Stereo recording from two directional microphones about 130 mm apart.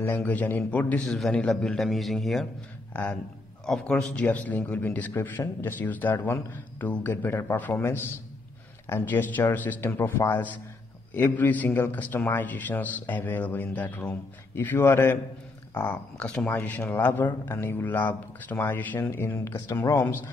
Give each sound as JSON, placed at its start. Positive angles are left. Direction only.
{"t": 0.0, "sound": "speech", "side_deg": 15}
{"t": 2.9, "sound": "speech", "side_deg": 10}